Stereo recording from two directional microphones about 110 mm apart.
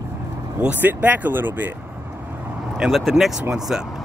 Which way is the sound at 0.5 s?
15° right (ahead or behind).